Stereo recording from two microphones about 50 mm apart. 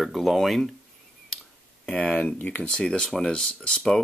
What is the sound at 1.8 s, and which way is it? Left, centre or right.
Speech, left.